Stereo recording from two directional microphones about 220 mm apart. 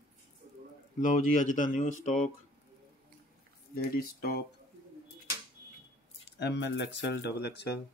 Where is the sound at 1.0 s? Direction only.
35° left (ahead or behind).